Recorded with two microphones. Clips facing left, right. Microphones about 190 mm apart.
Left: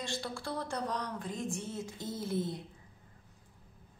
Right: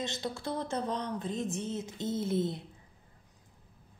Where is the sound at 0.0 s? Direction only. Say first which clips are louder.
Right 3 dB; 20° right (ahead or behind).